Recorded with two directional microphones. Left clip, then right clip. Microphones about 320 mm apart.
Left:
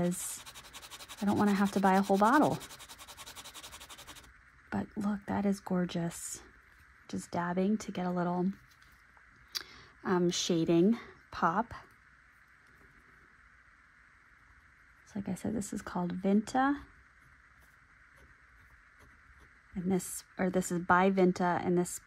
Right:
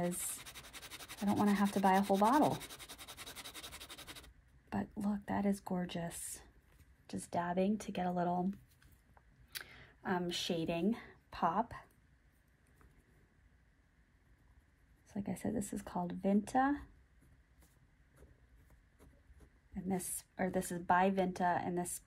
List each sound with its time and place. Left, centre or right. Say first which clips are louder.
1.3 s a woman's voice: left 4 dB; centre
4.6 s a woman's voice: left 4 dB; left
9.5 s speech: left 7 dB; centre
15.1 s a woman's voice: left 3 dB; centre
19.7 s a woman's voice: left 6 dB; centre